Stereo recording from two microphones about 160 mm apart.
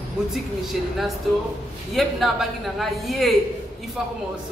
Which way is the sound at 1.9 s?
Centre (ahead or behind).